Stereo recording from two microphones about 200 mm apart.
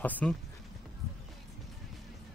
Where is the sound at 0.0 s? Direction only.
5° left (ahead or behind).